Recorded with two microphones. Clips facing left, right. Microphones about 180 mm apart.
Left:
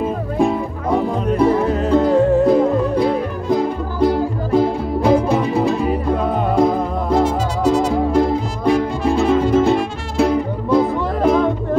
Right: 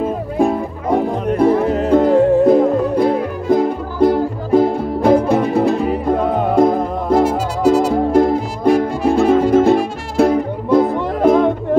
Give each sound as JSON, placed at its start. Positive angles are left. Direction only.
{"t": 0.4, "sound": "music", "side_deg": -50}
{"t": 7.2, "sound": "music", "side_deg": -10}
{"t": 7.9, "sound": "music", "side_deg": -50}